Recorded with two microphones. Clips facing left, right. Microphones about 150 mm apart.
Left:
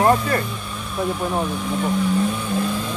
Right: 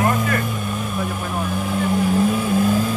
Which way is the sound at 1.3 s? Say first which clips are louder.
Even; 5° right (ahead or behind).